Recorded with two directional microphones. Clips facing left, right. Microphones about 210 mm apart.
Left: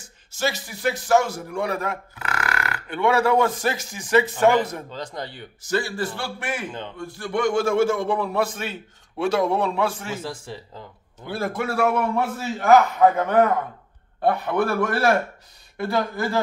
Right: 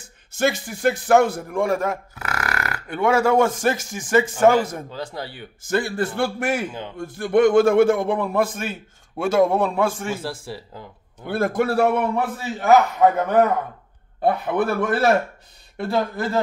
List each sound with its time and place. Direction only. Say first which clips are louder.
0.3 s a man's voice: right 5 dB; 55° right (ahead or behind)
4.9 s speech: right 1 dB; 5° right (ahead or behind)
5.7 s a man's voice: right 3 dB; 60° right (ahead or behind)
10.2 s speech: right 2 dB; 10° right (ahead or behind)
11.2 s a man's voice: right 5 dB; 55° right (ahead or behind)
11.6 s a man's voice: right 3 dB; 35° right (ahead or behind)
12.2 s a man's voice: even; centre (ahead or behind)
14.6 s speech: right 1 dB; 20° right (ahead or behind)